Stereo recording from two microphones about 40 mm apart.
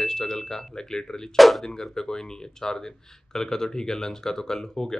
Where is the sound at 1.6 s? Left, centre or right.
Centre.